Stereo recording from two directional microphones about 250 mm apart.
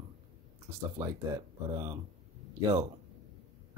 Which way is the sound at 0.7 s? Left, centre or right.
Centre.